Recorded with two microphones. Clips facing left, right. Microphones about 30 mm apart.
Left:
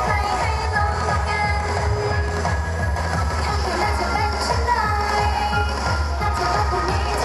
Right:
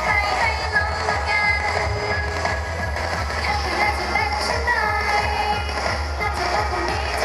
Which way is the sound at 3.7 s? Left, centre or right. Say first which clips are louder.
Even; centre.